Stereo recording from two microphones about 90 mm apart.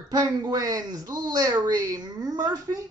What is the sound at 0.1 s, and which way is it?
Speech, 50° right (ahead or behind).